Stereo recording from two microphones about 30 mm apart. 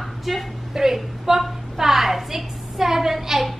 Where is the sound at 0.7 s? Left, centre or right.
Centre.